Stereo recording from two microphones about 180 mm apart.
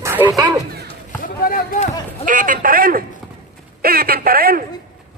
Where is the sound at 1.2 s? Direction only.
55° left (ahead or behind).